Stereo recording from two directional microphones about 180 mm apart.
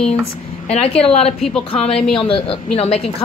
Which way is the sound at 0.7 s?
35° left (ahead or behind).